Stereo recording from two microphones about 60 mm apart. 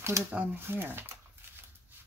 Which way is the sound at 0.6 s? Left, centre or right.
Right.